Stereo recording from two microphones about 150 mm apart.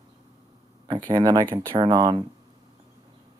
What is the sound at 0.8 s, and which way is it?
Speech, 30° right (ahead or behind).